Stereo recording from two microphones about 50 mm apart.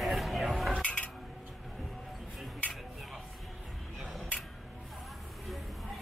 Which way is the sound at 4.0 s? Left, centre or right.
Centre.